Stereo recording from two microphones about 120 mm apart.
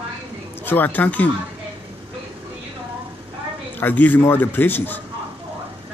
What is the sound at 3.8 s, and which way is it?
Speech, 15° left (ahead or behind).